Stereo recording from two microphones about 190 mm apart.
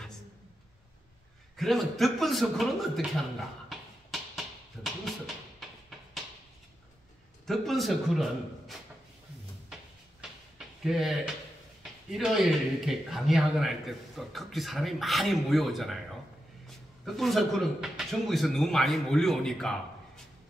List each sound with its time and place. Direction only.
1.6 s speech: centre (ahead or behind)
3.6 s a sound: centre (ahead or behind)
7.4 s speech: centre (ahead or behind)
10.8 s a man's voice: centre (ahead or behind)